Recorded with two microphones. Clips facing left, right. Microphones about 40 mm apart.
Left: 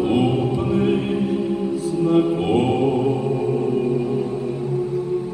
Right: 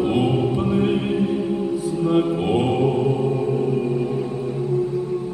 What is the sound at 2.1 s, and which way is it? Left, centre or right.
Chant, centre.